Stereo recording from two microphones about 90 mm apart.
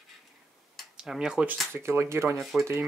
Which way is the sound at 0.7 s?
Centre (ahead or behind).